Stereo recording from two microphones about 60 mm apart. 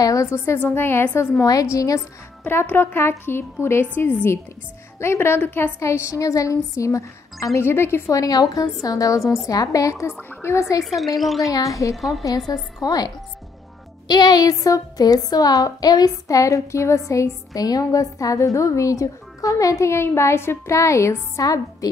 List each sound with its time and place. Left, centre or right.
0.0 s a woman's voice: left
0.6 s speech: left
1.4 s a woman's voice: left
2.4 s a woman's voice: left
5.8 s a woman's voice: left
7.5 s a woman's voice: left
8.1 s a woman's voice: left
10.4 s a woman's voice: left
10.8 s speech: centre
11.4 s a woman's voice: left
11.9 s speech: centre
12.8 s a woman's voice: left
14.3 s a woman's voice: left
17.6 s a woman's voice: left